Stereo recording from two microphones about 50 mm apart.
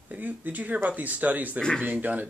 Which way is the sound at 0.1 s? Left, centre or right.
Right.